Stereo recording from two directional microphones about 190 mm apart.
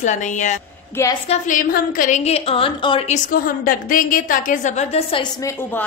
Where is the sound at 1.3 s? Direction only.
45° left (ahead or behind); by 5.8 s 15° left (ahead or behind).